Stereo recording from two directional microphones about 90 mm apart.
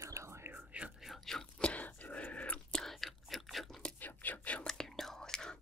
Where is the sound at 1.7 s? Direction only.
15° left (ahead or behind).